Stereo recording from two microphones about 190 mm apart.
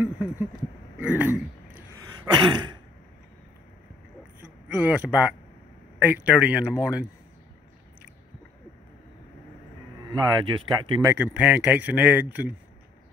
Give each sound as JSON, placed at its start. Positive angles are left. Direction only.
{"t": 0.0, "sound": "a sound", "side_deg": -10}
{"t": 0.9, "sound": "throat clearing", "side_deg": -10}
{"t": 2.4, "sound": "throat clearing", "side_deg": -25}
{"t": 4.7, "sound": "speech", "side_deg": -10}
{"t": 10.1, "sound": "speech", "side_deg": -25}